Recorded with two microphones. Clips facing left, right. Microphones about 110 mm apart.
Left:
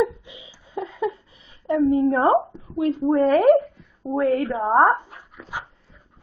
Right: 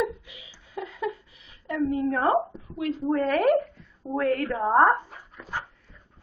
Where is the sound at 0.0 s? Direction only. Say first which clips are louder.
Left 6 dB; 25° left (ahead or behind).